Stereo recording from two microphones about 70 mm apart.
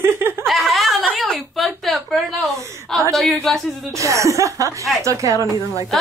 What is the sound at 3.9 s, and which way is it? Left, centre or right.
Speech, right.